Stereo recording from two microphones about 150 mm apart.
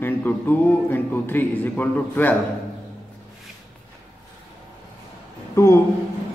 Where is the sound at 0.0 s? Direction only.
10° left (ahead or behind).